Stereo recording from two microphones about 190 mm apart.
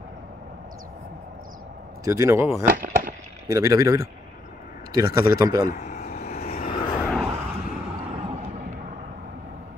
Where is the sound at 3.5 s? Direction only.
15° right (ahead or behind).